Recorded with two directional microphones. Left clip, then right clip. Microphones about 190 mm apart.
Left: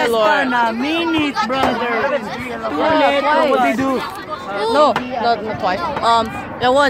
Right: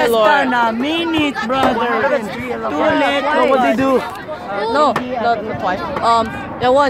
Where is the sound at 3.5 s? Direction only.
15° right (ahead or behind).